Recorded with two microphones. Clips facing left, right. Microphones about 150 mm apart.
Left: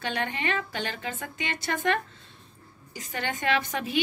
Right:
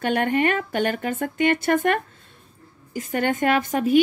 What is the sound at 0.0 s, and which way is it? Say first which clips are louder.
Speech: right 10 dB; 50° right (ahead or behind).